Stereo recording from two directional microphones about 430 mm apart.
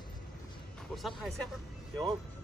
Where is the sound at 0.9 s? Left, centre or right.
Centre.